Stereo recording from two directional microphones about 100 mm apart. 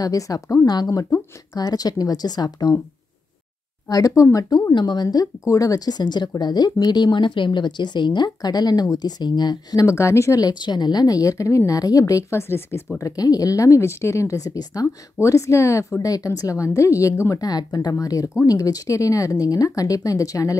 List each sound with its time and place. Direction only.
0.0 s speech: 35° left (ahead or behind)
3.9 s speech: 30° left (ahead or behind)
10.5 s speech: 45° left (ahead or behind)